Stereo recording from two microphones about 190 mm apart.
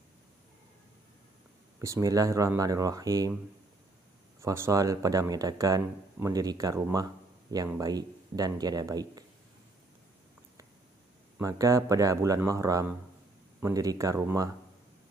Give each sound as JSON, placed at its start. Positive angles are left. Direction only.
{"t": 1.8, "sound": "speech", "side_deg": -15}
{"t": 4.4, "sound": "speech", "side_deg": -15}
{"t": 11.3, "sound": "speech", "side_deg": -15}